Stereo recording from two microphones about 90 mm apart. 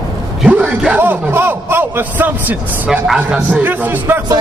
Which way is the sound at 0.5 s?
10° right (ahead or behind).